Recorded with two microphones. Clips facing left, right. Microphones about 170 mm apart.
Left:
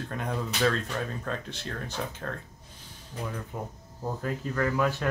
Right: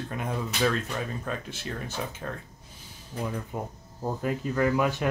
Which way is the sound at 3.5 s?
15° right (ahead or behind).